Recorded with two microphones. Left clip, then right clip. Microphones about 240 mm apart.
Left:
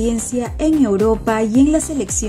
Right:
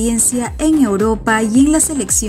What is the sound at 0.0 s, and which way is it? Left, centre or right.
Speech, right.